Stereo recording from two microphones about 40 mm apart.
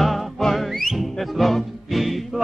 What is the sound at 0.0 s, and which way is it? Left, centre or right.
Music, centre.